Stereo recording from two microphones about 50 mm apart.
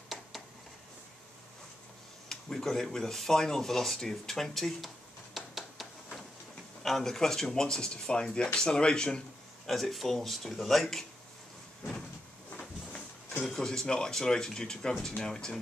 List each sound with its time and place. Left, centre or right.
2.2 s speech: centre
9.7 s speech: centre
12.5 s a sound: left
13.5 s speech: centre